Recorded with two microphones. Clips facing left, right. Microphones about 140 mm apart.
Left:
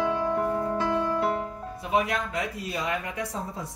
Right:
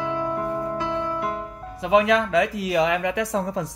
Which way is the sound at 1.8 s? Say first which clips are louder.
Right 8 dB; 90° right.